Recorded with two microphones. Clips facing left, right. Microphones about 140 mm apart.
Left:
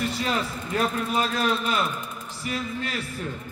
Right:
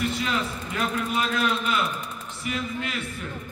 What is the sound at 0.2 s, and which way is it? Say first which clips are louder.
A man's voice: left 1 dB; 35° left (ahead or behind).